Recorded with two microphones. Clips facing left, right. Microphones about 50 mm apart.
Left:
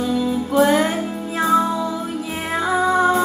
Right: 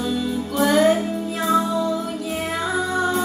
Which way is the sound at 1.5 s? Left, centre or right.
Left.